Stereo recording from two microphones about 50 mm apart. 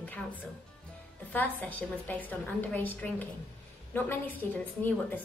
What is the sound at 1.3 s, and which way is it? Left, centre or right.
A woman's voice, left.